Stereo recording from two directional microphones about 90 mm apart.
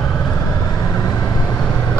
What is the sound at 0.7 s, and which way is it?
Vehicle, 40° left (ahead or behind).